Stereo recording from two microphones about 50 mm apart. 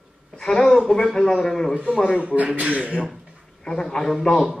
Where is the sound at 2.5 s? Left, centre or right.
Right.